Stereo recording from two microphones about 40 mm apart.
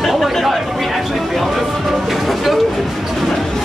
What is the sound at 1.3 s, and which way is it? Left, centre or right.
Music, centre.